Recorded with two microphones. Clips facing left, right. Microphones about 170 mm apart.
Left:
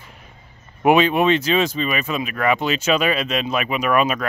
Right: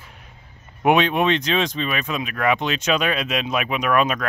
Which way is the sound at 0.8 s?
Centre (ahead or behind).